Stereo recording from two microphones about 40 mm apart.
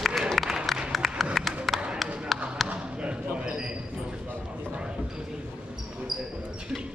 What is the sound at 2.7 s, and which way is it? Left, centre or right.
Basketball bounce, right.